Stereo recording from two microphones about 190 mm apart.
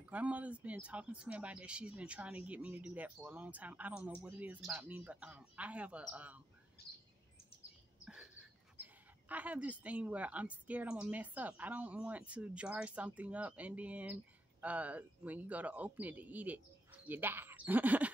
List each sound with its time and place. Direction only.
0.0 s speech: 5° right (ahead or behind)
6.8 s bird vocalization: 60° left (ahead or behind)
8.0 s a sound: 5° right (ahead or behind)
8.7 s speech: 10° right (ahead or behind)